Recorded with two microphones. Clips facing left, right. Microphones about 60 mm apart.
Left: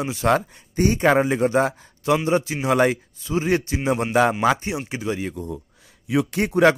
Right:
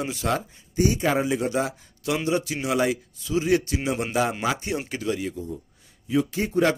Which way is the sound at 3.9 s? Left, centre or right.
Left.